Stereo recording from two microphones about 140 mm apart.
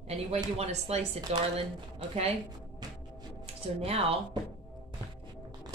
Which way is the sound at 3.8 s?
45° right (ahead or behind).